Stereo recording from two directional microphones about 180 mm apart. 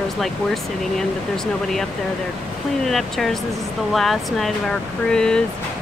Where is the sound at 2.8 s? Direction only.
Centre (ahead or behind).